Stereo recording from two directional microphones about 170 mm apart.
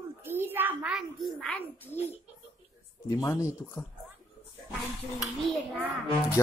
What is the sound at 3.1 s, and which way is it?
Speech, 20° left (ahead or behind).